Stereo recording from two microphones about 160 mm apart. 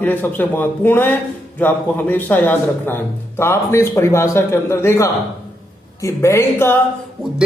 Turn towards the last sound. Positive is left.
turn(degrees=15)  # may be behind; listen again after turning